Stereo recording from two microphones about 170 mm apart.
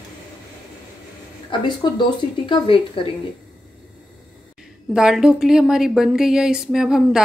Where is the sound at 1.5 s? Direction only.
30° left (ahead or behind).